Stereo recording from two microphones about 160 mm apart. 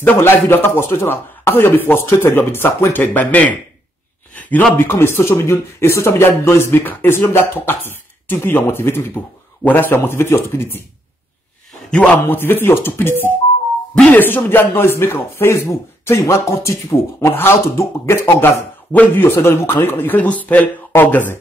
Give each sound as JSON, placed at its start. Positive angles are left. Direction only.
{"t": 0.0, "sound": "speech", "side_deg": 10}
{"t": 11.9, "sound": "speech", "side_deg": 10}